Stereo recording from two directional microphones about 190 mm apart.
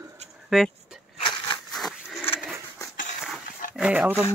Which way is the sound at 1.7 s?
Centre (ahead or behind).